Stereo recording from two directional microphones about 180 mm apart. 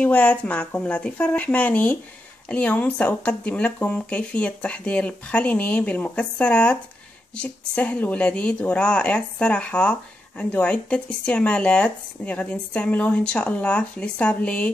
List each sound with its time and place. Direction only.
0.0 s a woman's voice: 5° left (ahead or behind)